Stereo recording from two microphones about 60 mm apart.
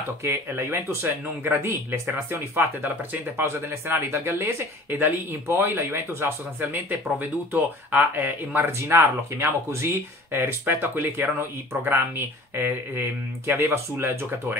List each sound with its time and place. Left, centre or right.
0.2 s speech: right
6.6 s speech: right